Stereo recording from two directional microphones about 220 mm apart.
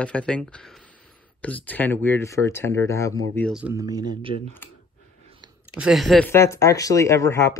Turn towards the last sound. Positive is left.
turn(degrees=10)  # may be behind; listen again after turning